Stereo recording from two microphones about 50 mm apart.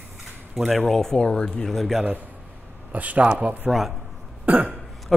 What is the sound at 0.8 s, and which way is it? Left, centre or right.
Speech, centre.